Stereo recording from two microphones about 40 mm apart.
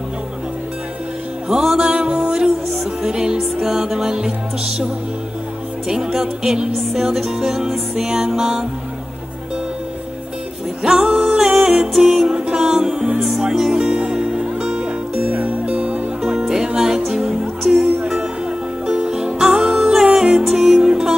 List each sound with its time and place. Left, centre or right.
1.5 s music: centre
10.8 s music: centre
11.3 s music: centre
11.6 s music: centre
11.9 s music: centre
12.4 s music: right
12.6 s music: centre
13.7 s music: right
15.3 s music: right
15.6 s music: right
16.3 s music: centre